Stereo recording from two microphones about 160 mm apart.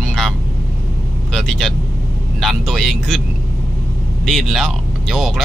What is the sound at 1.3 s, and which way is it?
Vehicle, 5° left (ahead or behind).